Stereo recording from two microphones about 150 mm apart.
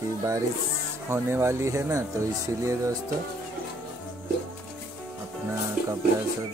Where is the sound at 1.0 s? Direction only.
15° right (ahead or behind).